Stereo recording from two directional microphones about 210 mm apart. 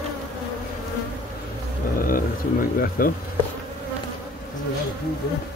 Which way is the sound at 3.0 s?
45° left (ahead or behind).